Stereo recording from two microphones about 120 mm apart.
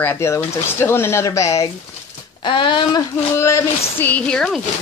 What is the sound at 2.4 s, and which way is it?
Speech, 40° left (ahead or behind).